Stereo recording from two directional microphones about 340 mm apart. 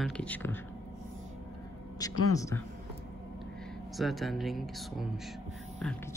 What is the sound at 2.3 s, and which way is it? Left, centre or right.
Speech, centre.